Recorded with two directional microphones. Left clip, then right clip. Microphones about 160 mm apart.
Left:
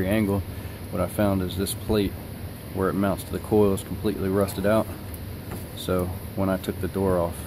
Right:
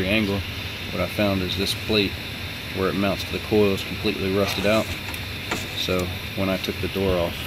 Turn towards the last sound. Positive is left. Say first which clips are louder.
# right 1 dB
turn(degrees=15)  # may be behind; listen again after turning